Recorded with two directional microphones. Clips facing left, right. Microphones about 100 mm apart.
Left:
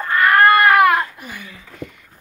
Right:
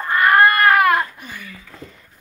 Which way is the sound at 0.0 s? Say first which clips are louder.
Even; 20° right (ahead or behind).